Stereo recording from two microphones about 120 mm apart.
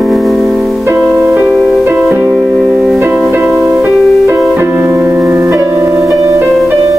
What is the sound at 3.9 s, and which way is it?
Music, 5° left (ahead or behind).